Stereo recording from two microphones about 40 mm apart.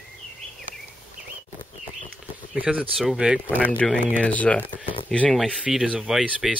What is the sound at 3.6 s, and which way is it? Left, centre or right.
Speech, left.